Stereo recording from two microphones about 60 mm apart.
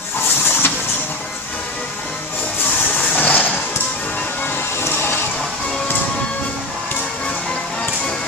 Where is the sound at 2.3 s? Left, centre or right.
Left.